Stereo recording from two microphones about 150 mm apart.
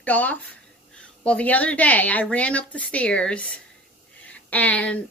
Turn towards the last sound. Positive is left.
turn(degrees=10)  # may be behind; listen again after turning